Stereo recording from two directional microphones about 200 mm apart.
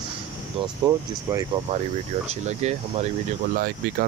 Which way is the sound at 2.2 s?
35° right (ahead or behind).